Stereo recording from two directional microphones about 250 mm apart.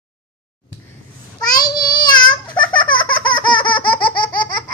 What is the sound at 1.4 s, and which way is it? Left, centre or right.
Babbling, centre.